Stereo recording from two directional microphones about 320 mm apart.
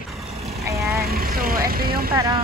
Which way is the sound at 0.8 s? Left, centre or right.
Right.